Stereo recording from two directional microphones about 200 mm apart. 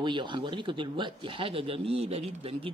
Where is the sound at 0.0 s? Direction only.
25° right (ahead or behind).